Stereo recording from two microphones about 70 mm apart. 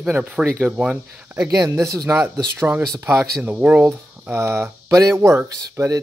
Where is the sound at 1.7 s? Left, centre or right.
Right.